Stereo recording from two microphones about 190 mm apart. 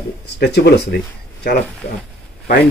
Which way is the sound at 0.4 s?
60° left (ahead or behind).